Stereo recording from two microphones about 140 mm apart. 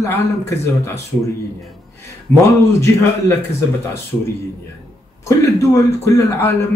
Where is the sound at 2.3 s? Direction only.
50° right (ahead or behind).